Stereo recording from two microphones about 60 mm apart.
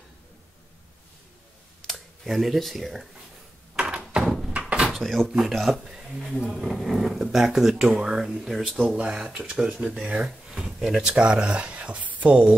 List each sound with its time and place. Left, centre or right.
1.9 s speech: centre
3.7 s door: centre
4.2 s door: centre
4.5 s door: right
4.9 s speech: centre